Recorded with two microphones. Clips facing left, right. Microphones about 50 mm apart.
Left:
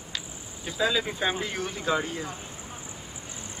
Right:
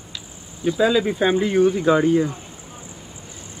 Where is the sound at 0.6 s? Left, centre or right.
Centre.